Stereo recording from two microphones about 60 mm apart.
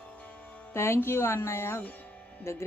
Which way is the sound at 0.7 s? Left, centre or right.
Left.